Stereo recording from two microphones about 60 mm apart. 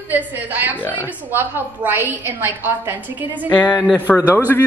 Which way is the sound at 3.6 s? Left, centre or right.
Left.